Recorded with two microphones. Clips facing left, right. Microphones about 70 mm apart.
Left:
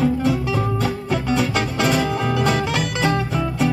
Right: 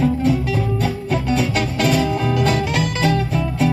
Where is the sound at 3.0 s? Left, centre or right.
Left.